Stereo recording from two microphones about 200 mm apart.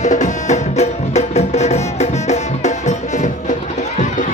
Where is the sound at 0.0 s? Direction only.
35° left (ahead or behind).